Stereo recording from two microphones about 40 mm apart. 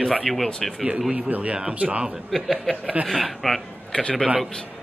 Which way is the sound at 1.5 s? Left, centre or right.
Right.